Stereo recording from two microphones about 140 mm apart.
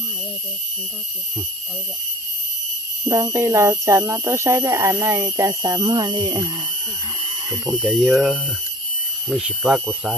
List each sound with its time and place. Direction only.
3.1 s speech: 20° right (ahead or behind)
7.6 s speech: centre (ahead or behind)